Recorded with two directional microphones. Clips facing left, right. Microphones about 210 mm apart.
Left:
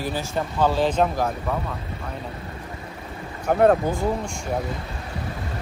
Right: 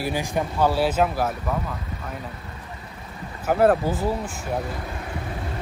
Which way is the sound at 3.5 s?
5° right (ahead or behind).